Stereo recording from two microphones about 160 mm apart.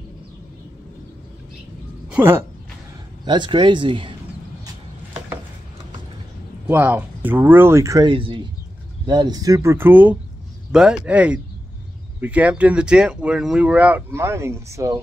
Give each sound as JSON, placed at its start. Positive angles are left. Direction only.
{"t": 2.1, "sound": "speech", "side_deg": -15}
{"t": 3.3, "sound": "speech", "side_deg": -30}
{"t": 6.7, "sound": "speech", "side_deg": -10}
{"t": 8.1, "sound": "speech", "side_deg": -30}